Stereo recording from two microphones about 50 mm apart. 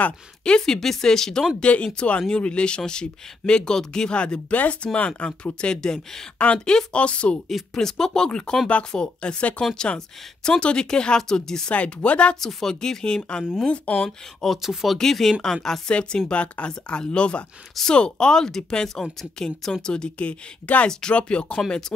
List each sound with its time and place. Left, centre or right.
0.4 s speech: centre
1.6 s speech: left
6.3 s a woman's voice: left
6.6 s speech: centre
7.7 s speech: centre
11.7 s speech: left
12.4 s speech: centre
13.9 s speech: centre
15.0 s speech: centre
15.9 s speech: left
21.6 s speech: centre